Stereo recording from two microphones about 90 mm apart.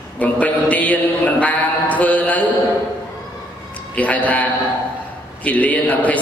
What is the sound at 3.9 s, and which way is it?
Mantra, 15° left (ahead or behind).